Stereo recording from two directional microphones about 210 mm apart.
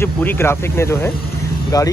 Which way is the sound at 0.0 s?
10° left (ahead or behind).